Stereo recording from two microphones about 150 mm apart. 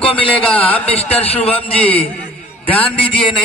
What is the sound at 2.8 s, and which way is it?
Speech, 35° left (ahead or behind).